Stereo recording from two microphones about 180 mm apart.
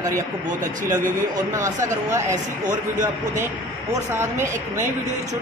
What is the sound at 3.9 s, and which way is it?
Speech, 15° right (ahead or behind).